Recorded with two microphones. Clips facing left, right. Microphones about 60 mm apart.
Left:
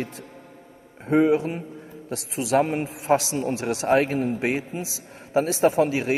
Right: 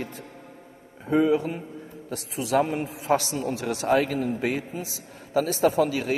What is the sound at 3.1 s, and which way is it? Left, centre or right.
Speech, left.